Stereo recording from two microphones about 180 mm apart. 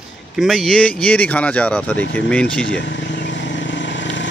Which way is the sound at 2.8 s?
75° left (ahead or behind).